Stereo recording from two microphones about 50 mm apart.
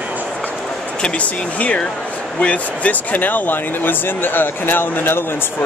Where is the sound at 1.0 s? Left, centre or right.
Left.